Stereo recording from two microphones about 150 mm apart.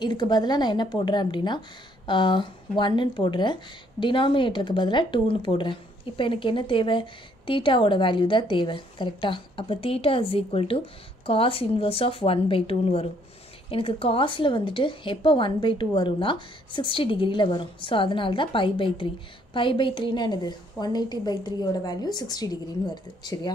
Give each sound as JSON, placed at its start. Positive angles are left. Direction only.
{"t": 0.0, "sound": "speech", "side_deg": 30}